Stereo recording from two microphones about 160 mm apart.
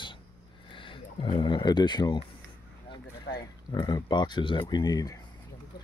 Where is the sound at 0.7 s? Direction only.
30° left (ahead or behind).